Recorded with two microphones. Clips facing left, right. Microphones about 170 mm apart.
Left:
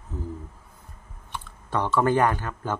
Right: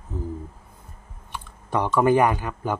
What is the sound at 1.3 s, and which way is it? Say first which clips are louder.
Speech: right 2 dB; 15° right (ahead or behind).